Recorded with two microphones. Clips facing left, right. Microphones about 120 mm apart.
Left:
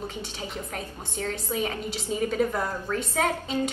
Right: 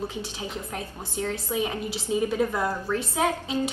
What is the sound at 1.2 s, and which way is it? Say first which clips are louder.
A woman's voice: right 1 dB; 15° right (ahead or behind).